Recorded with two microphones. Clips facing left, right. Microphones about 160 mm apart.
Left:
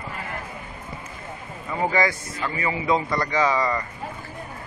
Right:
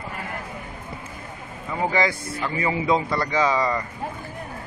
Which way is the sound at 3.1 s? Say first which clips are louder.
Even; 5° right (ahead or behind).